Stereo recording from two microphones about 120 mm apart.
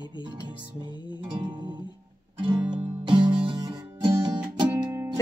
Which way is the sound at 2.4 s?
45° right (ahead or behind).